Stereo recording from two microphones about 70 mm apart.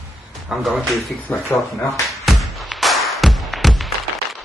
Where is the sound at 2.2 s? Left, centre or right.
Centre.